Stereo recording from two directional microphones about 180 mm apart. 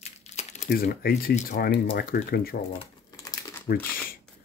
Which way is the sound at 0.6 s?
60° left (ahead or behind).